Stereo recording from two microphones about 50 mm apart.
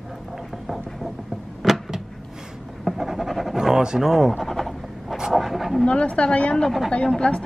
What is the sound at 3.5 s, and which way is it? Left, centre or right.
Speech, centre.